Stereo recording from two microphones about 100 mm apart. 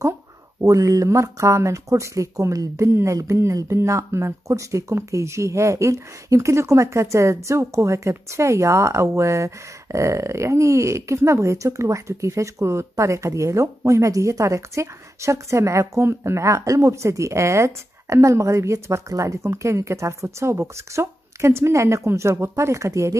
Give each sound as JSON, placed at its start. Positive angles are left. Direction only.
{"t": 0.6, "sound": "speech", "side_deg": -35}